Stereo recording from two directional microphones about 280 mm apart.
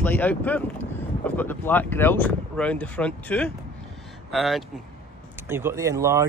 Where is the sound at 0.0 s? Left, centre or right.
Centre.